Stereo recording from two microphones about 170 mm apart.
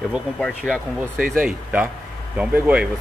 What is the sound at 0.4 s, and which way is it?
Speech, 5° left (ahead or behind).